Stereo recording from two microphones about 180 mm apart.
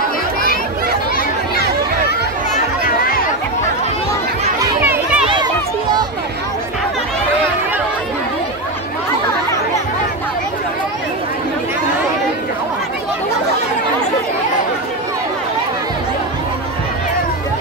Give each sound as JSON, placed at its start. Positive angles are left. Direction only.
{"t": 2.5, "sound": "chatter", "side_deg": 50}
{"t": 4.6, "sound": "chatter", "side_deg": -10}
{"t": 5.2, "sound": "a sound", "side_deg": -25}